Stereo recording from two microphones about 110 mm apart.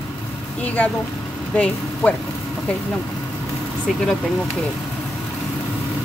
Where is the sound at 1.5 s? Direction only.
15° left (ahead or behind).